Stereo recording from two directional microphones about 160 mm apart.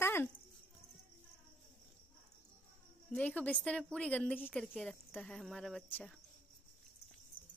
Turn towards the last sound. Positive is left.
turn(degrees=10)  # may be behind; listen again after turning